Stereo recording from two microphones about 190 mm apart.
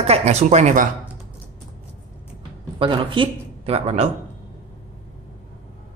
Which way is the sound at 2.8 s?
25° right (ahead or behind).